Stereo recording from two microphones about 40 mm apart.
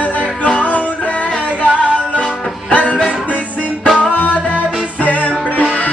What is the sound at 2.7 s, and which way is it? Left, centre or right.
Music, left.